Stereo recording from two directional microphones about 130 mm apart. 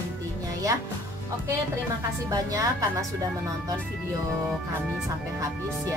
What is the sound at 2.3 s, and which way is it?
Music, 25° right (ahead or behind).